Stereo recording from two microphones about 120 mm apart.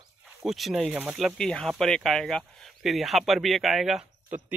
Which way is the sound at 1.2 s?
5° left (ahead or behind).